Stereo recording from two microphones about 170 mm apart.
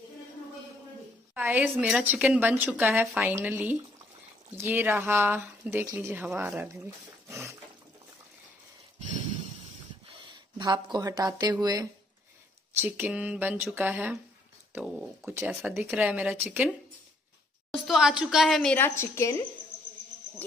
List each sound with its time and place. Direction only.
1.3 s speech: 10° right (ahead or behind)
7.2 s water: 15° right (ahead or behind)
10.6 s speech: 25° right (ahead or behind); by 16.7 s 10° right (ahead or behind)
17.8 s a woman's voice: 5° right (ahead or behind)
18.9 s a woman's voice: 15° left (ahead or behind)